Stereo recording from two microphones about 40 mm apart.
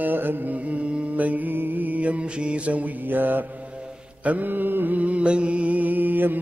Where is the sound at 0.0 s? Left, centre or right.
Right.